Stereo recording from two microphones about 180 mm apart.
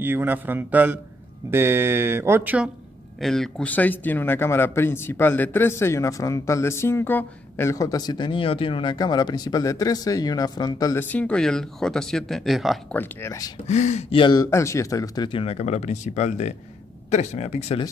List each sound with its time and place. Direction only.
0.0 s speech: 10° right (ahead or behind)
3.2 s speech: centre (ahead or behind); by 11.1 s 20° left (ahead or behind)
11.1 s speech: 5° left (ahead or behind)
12.9 s speech: 15° left (ahead or behind)
13.7 s speech: 40° left (ahead or behind)